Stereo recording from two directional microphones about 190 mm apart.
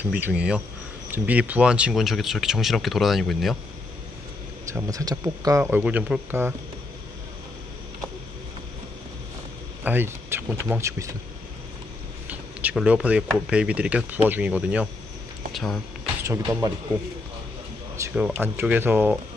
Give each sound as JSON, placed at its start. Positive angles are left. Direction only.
{"t": 0.1, "sound": "speech", "side_deg": -5}
{"t": 4.6, "sound": "speech", "side_deg": -15}
{"t": 9.8, "sound": "speech", "side_deg": -10}
{"t": 12.3, "sound": "speech", "side_deg": -5}
{"t": 16.3, "sound": "speech", "side_deg": -15}
{"t": 17.9, "sound": "speech", "side_deg": -10}